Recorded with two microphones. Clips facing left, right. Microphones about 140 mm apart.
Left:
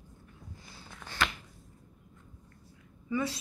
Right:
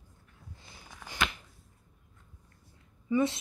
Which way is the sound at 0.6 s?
15° right (ahead or behind).